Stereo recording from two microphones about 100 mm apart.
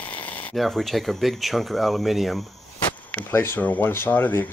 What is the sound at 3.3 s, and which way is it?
Speech, 25° left (ahead or behind).